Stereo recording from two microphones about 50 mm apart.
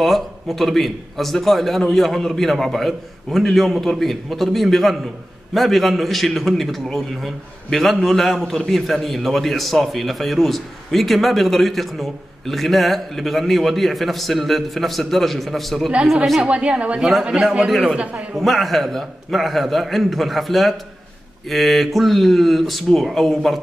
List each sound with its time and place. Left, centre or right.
0.0 s a man's voice: centre
16.3 s a woman's voice: right
17.6 s a man's voice: centre
17.9 s a woman's voice: right
18.3 s a man's voice: centre